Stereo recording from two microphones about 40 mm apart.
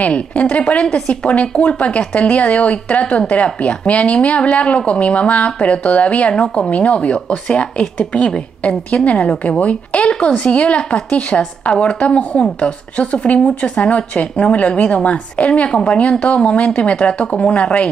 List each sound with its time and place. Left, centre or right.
0.1 s a woman's voice: left
8.6 s a woman's voice: left